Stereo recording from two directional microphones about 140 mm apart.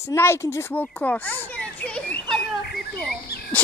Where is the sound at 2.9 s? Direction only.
10° left (ahead or behind).